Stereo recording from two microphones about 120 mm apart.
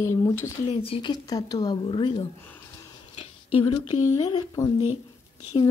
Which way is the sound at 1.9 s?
45° left (ahead or behind).